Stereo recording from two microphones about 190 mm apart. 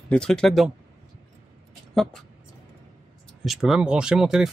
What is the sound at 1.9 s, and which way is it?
Speech, centre (ahead or behind).